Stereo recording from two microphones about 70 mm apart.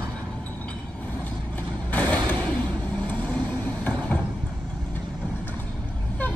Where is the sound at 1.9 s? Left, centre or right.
Left.